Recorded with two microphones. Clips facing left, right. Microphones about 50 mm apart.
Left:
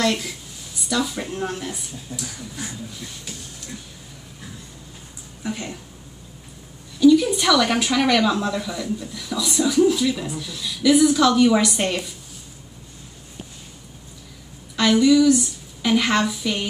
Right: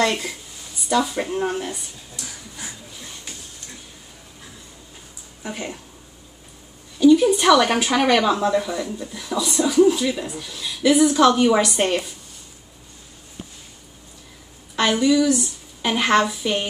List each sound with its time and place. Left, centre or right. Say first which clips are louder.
0.0 s speech: right 1 dB; centre
2.6 s a sound: left 4 dB; centre
5.4 s speech: left 1 dB; centre
7.0 s a sound: even; right
7.3 s a woman's voice: right 3 dB; right
9.1 s a woman's voice: right 5 dB; right
14.8 s a woman's voice: left 2 dB; right